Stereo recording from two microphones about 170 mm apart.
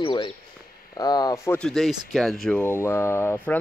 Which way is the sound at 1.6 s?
Centre (ahead or behind).